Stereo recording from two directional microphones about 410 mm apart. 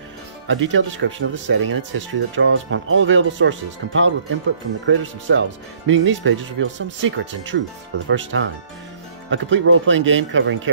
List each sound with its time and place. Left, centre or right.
0.5 s speech: right